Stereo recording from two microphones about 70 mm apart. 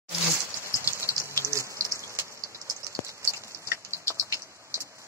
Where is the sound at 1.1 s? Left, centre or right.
Left.